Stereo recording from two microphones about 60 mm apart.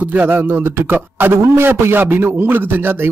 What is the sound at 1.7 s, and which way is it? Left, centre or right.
Speech, right.